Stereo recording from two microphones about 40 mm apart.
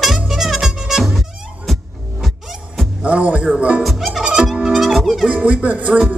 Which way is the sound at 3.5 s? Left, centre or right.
Right.